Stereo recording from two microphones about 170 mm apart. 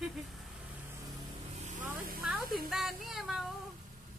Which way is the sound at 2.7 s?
5° right (ahead or behind).